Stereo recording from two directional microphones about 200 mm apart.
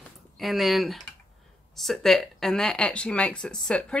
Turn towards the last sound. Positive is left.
turn(degrees=5)  # may be behind; listen again after turning